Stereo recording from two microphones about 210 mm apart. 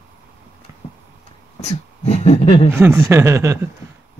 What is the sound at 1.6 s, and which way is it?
Speech, 30° left (ahead or behind).